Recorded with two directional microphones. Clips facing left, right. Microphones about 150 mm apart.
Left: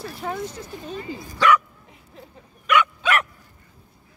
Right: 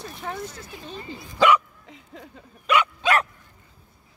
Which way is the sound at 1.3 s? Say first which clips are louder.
Even; 25° right (ahead or behind).